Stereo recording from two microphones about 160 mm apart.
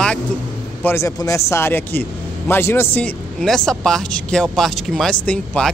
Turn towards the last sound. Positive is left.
turn(degrees=10)  # may be behind; listen again after turning